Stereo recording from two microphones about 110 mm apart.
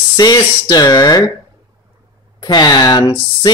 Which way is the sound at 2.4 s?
40° left (ahead or behind).